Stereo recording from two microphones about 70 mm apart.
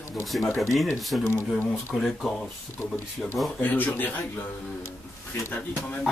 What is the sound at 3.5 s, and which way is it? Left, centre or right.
Speech, left.